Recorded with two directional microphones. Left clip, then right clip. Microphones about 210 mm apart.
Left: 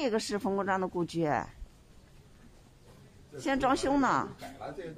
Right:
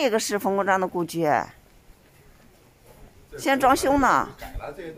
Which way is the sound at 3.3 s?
20° right (ahead or behind).